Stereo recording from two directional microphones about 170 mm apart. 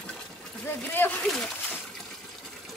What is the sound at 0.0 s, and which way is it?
Splash, 5° left (ahead or behind).